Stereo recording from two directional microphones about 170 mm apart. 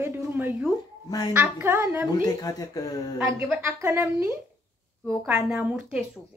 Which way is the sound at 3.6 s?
15° right (ahead or behind).